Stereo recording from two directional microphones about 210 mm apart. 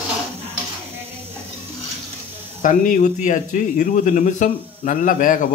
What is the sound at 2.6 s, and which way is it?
Speech, 40° left (ahead or behind).